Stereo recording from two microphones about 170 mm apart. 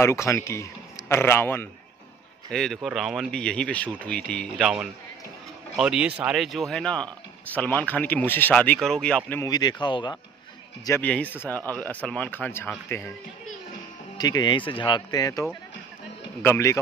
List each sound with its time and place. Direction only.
0.0 s a man's voice: 15° left (ahead or behind)
2.5 s a man's voice: centre (ahead or behind)
9.4 s speech: 25° left (ahead or behind)
10.9 s speech: 10° left (ahead or behind)
14.1 s speech: 25° left (ahead or behind)
16.4 s speech: 15° left (ahead or behind)